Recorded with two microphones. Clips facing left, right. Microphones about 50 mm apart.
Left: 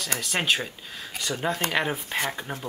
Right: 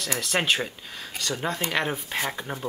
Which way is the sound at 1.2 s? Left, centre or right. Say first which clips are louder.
Left 1 dB; centre.